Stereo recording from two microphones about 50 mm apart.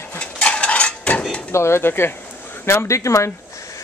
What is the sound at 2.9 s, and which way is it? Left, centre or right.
Speech, left.